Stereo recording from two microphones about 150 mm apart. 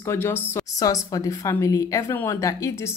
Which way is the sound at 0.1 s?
15° left (ahead or behind).